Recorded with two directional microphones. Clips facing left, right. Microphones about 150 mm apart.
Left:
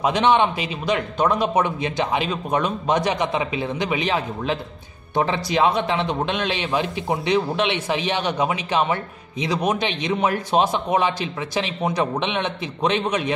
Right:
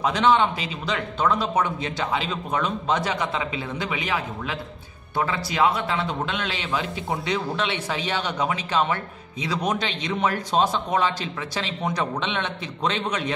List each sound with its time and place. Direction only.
0.0 s a man's voice: 15° left (ahead or behind)